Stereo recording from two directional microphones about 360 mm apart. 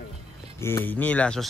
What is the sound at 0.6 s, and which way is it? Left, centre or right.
Speech, centre.